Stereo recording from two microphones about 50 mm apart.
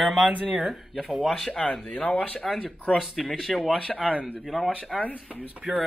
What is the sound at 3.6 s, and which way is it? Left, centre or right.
Speech, centre.